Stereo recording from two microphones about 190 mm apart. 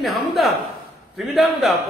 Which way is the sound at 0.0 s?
Centre (ahead or behind).